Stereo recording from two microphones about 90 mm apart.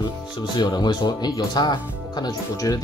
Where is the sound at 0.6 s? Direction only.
50° left (ahead or behind).